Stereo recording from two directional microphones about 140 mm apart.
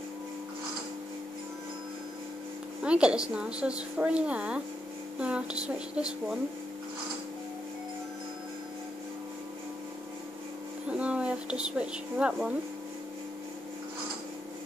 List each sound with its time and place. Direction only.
2.8 s a woman's voice: 5° right (ahead or behind)
10.9 s speech: 10° right (ahead or behind)